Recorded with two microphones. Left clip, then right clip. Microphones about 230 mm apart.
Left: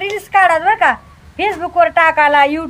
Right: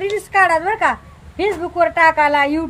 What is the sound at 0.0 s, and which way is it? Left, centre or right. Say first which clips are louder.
A woman's voice: left 3 dB; centre.